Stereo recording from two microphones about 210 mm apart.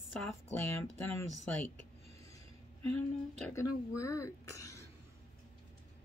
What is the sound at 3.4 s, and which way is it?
Speech, 5° left (ahead or behind).